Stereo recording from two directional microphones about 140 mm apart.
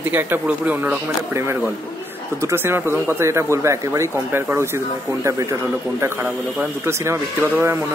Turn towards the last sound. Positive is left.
turn(degrees=-20)  # may be behind; listen again after turning